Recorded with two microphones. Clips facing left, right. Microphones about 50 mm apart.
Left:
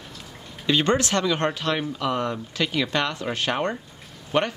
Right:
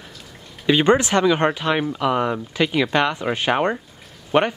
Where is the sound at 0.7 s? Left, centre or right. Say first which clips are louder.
Right 5 dB; centre.